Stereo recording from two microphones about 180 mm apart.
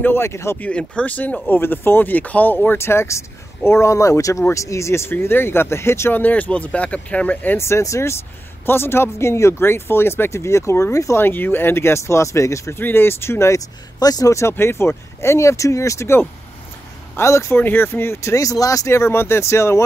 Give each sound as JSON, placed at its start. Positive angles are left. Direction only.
{"t": 0.0, "sound": "speech", "side_deg": 15}